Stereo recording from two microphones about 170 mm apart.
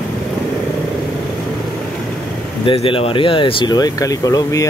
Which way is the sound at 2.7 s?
30° left (ahead or behind).